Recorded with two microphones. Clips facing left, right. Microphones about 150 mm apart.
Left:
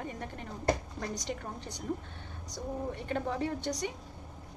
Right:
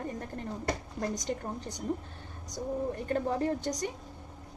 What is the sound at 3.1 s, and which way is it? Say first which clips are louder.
Speech: right 3 dB; 40° right (ahead or behind).